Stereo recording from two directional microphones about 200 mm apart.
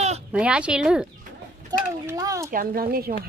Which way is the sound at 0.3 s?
5° right (ahead or behind).